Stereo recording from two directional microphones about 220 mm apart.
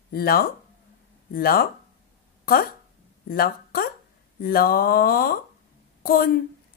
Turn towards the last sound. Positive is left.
turn(degrees=40)  # may be behind; listen again after turning